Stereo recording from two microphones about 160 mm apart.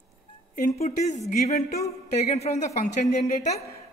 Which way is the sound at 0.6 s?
50° left (ahead or behind).